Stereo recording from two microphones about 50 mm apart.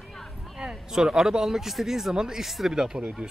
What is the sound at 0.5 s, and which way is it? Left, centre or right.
Speech, centre.